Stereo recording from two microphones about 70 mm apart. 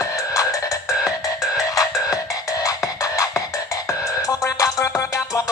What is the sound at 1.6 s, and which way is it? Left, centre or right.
Music, left.